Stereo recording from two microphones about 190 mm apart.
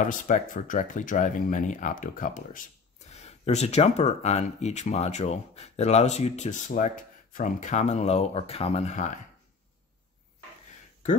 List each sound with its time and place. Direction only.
0.0 s speech: 45° left (ahead or behind)